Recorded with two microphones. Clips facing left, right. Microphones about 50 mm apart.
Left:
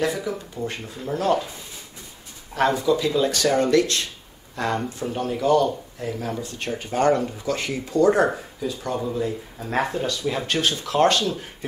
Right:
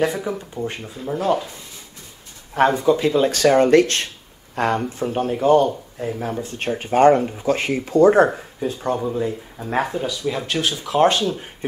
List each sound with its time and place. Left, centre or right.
0.0 s speech: right
0.6 s speech: centre
2.5 s speech: right
9.0 s speech: right
9.6 s speech: centre